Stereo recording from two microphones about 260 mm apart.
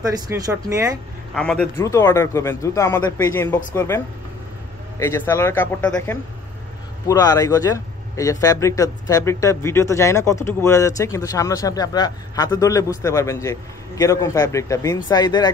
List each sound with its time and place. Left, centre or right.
0.0 s speech: centre
1.3 s speech: centre